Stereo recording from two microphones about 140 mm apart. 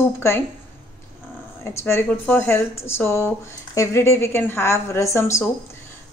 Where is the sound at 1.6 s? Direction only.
20° left (ahead or behind).